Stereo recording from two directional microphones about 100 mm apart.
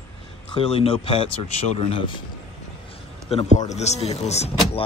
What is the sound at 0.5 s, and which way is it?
Speech, 70° left (ahead or behind).